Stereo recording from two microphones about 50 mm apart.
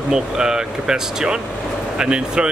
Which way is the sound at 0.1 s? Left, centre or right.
Centre.